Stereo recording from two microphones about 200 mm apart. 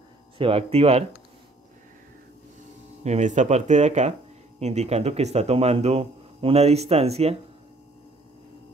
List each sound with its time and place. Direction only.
0.4 s speech: 30° right (ahead or behind)
3.0 s speech: 35° right (ahead or behind)